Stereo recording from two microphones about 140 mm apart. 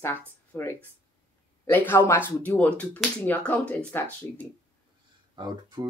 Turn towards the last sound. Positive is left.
turn(degrees=-35)  # may be behind; listen again after turning